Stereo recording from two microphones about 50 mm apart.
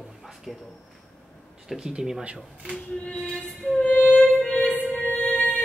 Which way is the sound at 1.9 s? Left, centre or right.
Centre.